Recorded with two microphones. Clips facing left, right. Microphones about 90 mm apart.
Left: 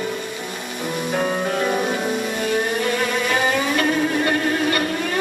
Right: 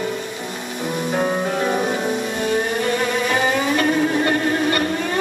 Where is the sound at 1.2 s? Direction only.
15° right (ahead or behind).